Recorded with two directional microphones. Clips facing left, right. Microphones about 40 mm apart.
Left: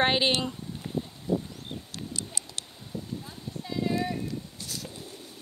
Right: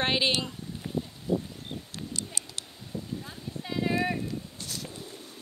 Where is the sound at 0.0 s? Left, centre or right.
Centre.